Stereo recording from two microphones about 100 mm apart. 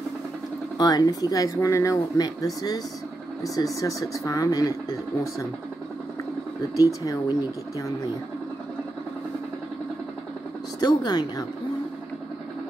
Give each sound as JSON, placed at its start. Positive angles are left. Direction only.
{"t": 0.7, "sound": "speech", "side_deg": 40}
{"t": 6.8, "sound": "speech", "side_deg": 35}
{"t": 10.8, "sound": "speech", "side_deg": 45}